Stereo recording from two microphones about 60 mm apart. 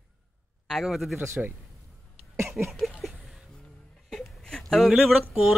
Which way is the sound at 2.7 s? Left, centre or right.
Centre.